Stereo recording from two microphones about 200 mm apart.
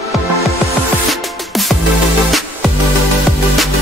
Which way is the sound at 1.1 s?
Centre (ahead or behind).